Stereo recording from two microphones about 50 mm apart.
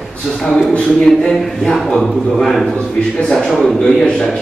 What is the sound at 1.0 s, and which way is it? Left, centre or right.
A man's voice, centre.